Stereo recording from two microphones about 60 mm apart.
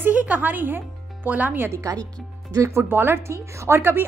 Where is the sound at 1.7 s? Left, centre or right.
Right.